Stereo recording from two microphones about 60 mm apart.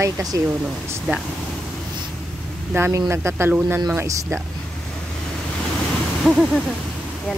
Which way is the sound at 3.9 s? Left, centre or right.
Right.